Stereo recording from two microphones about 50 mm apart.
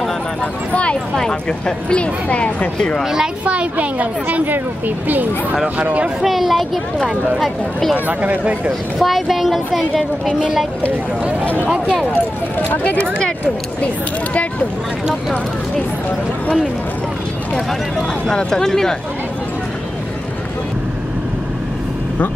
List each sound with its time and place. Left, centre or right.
1.9 s speech: left
3.0 s speech: centre
3.4 s speech: right
6.2 s a woman's voice: centre
7.9 s speech: right
9.0 s a woman's voice: centre
11.7 s speech: centre
12.5 s speech: left
18.2 s speech: centre